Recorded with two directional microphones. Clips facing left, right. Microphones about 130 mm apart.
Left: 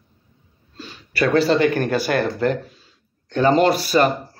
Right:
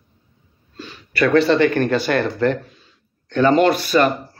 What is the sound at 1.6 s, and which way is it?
Speech, 10° left (ahead or behind).